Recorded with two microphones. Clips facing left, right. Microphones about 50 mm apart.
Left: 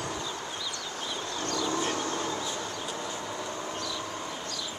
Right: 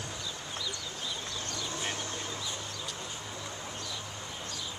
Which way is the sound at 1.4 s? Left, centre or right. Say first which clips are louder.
Left 12 dB; left.